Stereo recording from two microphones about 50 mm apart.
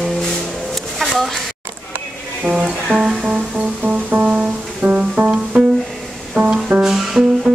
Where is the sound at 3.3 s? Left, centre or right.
Right; by 5.4 s centre.